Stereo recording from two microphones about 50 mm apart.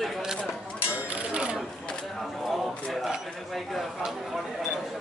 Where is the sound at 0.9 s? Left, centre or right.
Right.